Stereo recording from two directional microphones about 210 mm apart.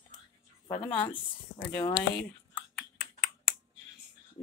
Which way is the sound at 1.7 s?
20° left (ahead or behind).